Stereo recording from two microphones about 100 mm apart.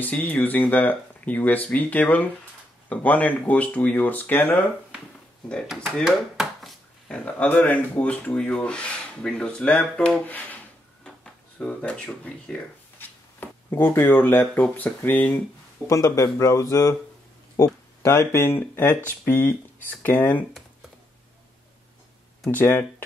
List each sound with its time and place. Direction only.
0.0 s speech: 15° left (ahead or behind)
6.0 s a sound: 5° right (ahead or behind)
7.1 s speech: 15° left (ahead or behind)
13.0 s speech: 20° left (ahead or behind)
15.9 s speech: 35° left (ahead or behind); by 20.4 s 15° left (ahead or behind)
22.5 s speech: 20° left (ahead or behind)